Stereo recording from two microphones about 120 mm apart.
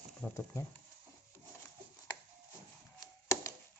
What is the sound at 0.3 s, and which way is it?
Speech, 25° left (ahead or behind).